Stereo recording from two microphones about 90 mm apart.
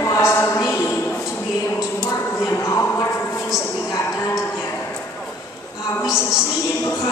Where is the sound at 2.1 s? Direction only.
35° left (ahead or behind).